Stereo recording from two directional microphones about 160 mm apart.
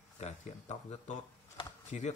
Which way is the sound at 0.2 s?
45° left (ahead or behind).